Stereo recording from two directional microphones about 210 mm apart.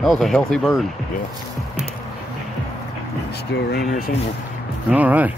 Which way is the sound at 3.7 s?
45° left (ahead or behind).